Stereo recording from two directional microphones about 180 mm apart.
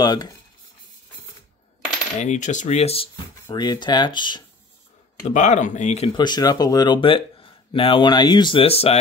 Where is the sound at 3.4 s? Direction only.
20° left (ahead or behind).